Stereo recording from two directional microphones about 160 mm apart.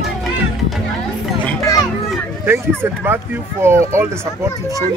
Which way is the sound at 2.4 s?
15° right (ahead or behind).